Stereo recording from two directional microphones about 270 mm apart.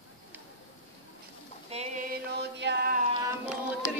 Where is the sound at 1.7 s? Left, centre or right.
Right.